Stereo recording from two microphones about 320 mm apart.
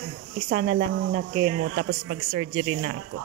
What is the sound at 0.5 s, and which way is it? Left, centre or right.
Speech, right.